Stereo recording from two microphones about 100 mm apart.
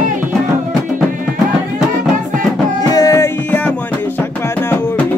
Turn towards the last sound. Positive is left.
turn(degrees=35)  # may be behind; listen again after turning